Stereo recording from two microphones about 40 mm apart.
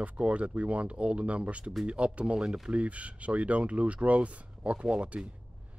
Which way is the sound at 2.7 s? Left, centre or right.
Right.